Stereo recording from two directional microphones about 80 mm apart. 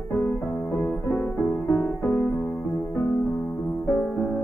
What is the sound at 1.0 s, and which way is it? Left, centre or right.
Music, left.